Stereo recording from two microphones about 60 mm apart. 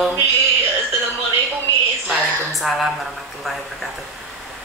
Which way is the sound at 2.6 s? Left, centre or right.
Centre.